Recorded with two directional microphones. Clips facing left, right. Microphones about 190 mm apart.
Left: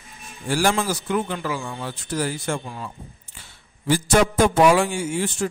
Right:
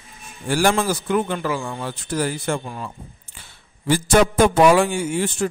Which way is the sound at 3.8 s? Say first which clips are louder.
Right 2 dB; 60° right (ahead or behind).